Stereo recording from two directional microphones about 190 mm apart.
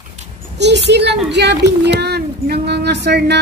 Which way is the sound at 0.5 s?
65° right (ahead or behind).